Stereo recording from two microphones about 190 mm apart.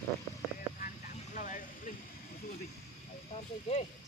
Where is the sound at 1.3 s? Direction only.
40° left (ahead or behind).